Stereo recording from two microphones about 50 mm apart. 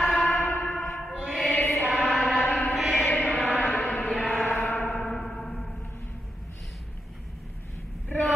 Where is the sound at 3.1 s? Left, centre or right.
Left.